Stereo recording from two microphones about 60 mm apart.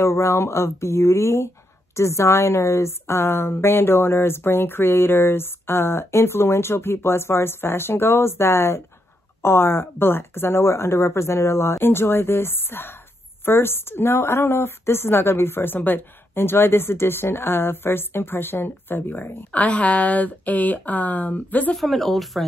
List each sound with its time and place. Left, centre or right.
0.0 s a woman's voice: left
19.5 s speech: left
21.7 s speech: centre